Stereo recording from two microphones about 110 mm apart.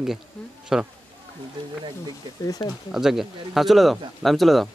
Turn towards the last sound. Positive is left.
turn(degrees=0)  # may be behind; listen again after turning